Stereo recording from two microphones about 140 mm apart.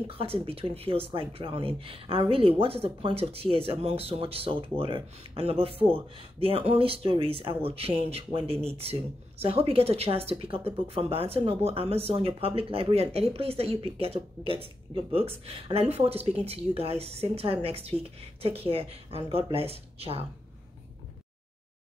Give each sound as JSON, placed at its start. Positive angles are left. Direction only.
{"t": 0.0, "sound": "speech", "side_deg": -45}